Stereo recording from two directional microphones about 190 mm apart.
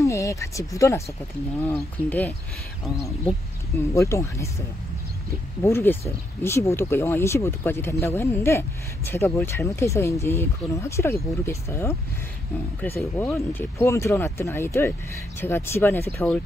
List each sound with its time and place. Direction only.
0.0 s speech: 15° left (ahead or behind)
3.9 s speech: 15° left (ahead or behind)